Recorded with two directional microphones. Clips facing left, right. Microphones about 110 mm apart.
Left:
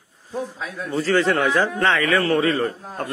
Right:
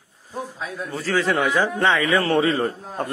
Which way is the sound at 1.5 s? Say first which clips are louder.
Left 1 dB; 15° right (ahead or behind).